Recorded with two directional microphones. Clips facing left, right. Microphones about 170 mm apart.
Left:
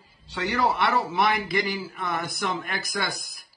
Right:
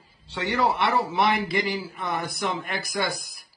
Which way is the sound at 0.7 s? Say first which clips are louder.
Even; 30° right (ahead or behind).